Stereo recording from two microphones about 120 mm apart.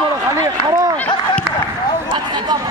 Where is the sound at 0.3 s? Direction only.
30° right (ahead or behind).